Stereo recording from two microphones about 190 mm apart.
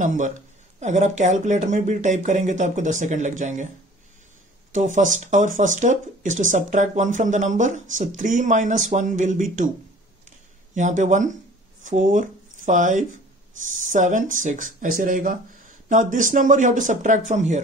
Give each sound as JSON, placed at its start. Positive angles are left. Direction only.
{"t": 0.0, "sound": "speech", "side_deg": -40}
{"t": 4.7, "sound": "speech", "side_deg": -40}
{"t": 10.7, "sound": "speech", "side_deg": -40}